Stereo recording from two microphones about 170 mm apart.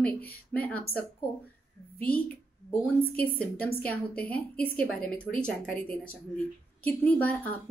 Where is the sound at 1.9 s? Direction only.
10° left (ahead or behind).